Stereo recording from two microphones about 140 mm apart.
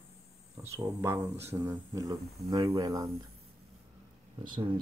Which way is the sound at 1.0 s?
20° right (ahead or behind).